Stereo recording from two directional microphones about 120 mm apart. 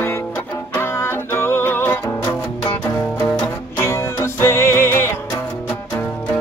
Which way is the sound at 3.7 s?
25° left (ahead or behind).